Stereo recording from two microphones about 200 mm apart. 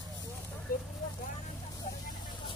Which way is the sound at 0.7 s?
45° left (ahead or behind).